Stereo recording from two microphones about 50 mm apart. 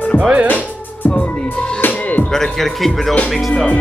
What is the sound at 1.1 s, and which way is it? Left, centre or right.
Music, centre.